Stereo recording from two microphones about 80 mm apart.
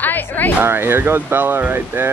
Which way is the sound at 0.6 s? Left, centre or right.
Right.